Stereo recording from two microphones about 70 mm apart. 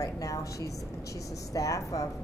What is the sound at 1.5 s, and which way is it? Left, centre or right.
Speech, left.